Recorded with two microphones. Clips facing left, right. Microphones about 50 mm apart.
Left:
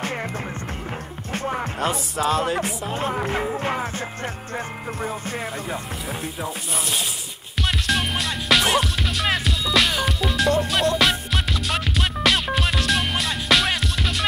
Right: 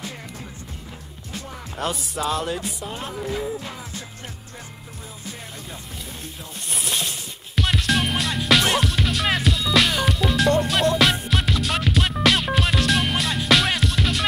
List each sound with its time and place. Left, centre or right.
1.3 s music: left
1.8 s music: centre
2.9 s speech: left
3.2 s music: left
5.0 s music: left
7.5 s music: centre